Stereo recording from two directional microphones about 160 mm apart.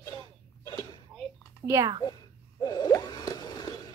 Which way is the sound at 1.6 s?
20° right (ahead or behind).